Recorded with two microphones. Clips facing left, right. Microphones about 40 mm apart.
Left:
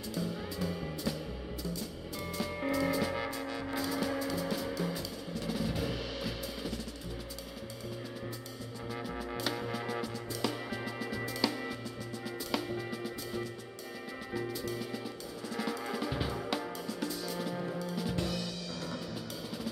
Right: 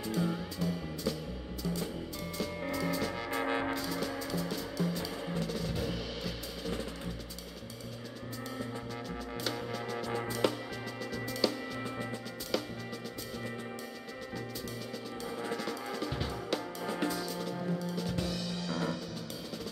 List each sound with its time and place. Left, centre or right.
2.3 s music: centre
3.3 s music: right
3.7 s music: centre
9.1 s music: centre
15.5 s music: centre
16.8 s music: right
17.3 s music: centre